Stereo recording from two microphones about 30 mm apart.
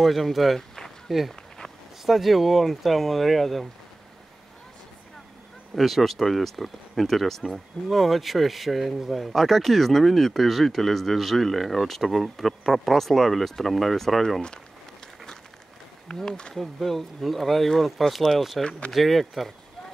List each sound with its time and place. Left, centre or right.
0.0 s speech: centre
0.6 s a sound: centre
1.0 s speech: centre
5.8 s speech: centre
7.4 s speech: centre
16.1 s speech: left
16.5 s speech: centre